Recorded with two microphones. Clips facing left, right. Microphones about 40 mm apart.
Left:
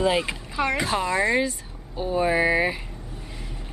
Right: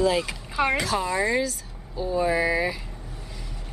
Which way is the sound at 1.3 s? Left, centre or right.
Left.